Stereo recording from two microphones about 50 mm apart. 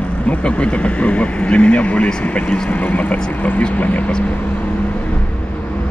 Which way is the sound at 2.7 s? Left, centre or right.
Left.